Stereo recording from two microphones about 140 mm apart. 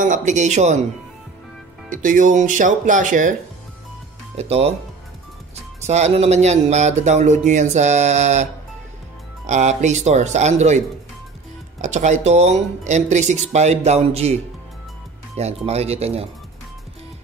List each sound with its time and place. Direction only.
0.0 s speech: 60° right (ahead or behind)
1.9 s speech: 70° right (ahead or behind)
4.4 s speech: 50° right (ahead or behind)
5.9 s speech: 50° right (ahead or behind)
9.5 s speech: 55° right (ahead or behind)
11.8 s speech: 55° right (ahead or behind)